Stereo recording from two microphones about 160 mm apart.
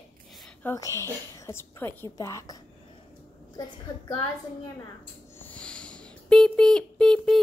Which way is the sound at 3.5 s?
30° left (ahead or behind).